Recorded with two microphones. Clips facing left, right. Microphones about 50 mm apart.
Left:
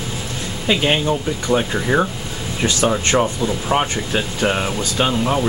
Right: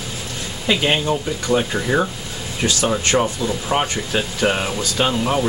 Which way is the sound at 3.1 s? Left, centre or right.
Centre.